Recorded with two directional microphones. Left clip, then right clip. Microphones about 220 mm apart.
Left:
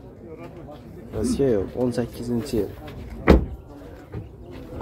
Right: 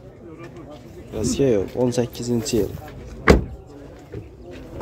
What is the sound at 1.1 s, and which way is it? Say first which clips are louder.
Speech: right 2 dB; 20° right (ahead or behind).